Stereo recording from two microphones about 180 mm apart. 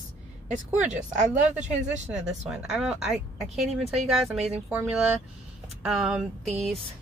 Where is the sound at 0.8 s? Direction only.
40° right (ahead or behind).